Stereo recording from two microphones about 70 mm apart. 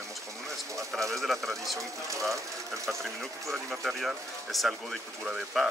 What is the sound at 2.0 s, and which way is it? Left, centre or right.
Speech, right.